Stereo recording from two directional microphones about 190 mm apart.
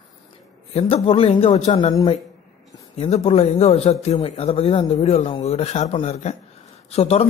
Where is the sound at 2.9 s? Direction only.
35° left (ahead or behind).